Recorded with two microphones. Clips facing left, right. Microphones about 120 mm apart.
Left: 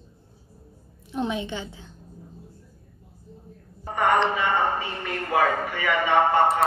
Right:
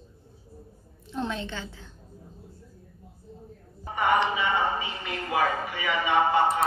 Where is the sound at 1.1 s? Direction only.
15° left (ahead or behind).